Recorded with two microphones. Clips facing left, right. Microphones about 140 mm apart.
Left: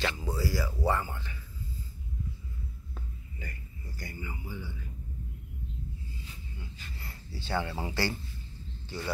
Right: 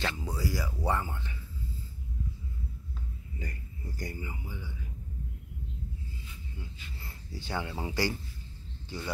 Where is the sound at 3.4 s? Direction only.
40° right (ahead or behind).